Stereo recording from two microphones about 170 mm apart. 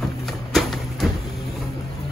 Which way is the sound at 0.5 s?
Centre (ahead or behind).